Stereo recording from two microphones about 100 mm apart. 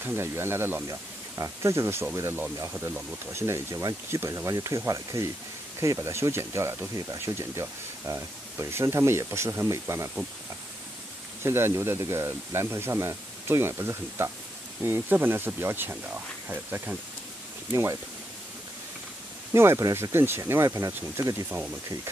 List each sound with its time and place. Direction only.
0.0 s speech: 25° right (ahead or behind)
11.4 s speech: 25° right (ahead or behind)
19.5 s speech: 25° right (ahead or behind)
21.5 s speech: 15° right (ahead or behind)